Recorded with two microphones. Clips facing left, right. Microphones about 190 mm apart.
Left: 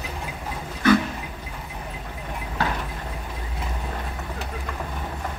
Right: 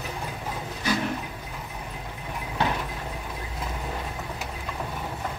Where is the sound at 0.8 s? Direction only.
55° left (ahead or behind).